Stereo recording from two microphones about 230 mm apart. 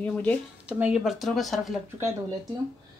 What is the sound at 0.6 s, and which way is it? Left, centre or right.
Speech, centre.